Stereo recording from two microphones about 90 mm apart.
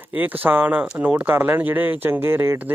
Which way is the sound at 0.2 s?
20° right (ahead or behind).